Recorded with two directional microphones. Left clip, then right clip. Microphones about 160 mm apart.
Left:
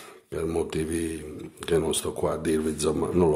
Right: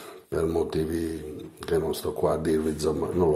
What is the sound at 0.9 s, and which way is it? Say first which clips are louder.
Mantra: even; 45° left (ahead or behind).